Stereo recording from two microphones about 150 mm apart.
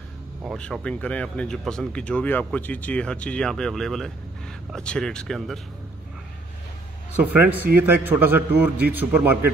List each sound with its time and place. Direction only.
0.6 s speech: 5° left (ahead or behind)
7.2 s a man's voice: 10° right (ahead or behind)